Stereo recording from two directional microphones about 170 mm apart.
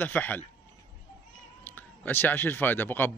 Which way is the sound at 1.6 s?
10° left (ahead or behind).